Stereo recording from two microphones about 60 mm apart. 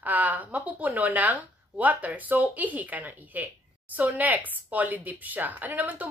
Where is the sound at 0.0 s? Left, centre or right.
Right.